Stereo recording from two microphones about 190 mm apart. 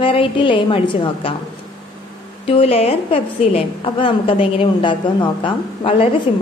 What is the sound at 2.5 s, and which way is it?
A woman's voice, 30° left (ahead or behind).